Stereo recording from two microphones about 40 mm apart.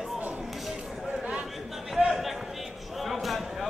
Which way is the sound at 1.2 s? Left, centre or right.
Right.